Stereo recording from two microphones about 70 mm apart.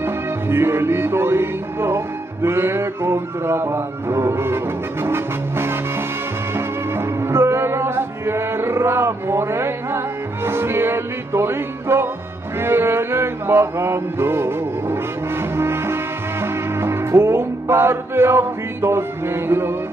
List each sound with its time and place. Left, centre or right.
0.0 s music: right